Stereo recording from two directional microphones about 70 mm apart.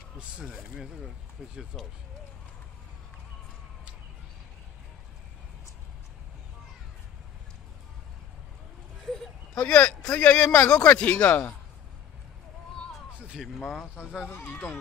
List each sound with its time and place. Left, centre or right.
0.2 s speech: centre
9.6 s speech: centre
13.6 s speech: centre
14.3 s speech: left